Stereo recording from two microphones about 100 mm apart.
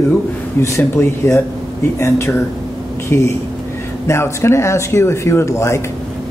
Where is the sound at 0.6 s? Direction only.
30° left (ahead or behind).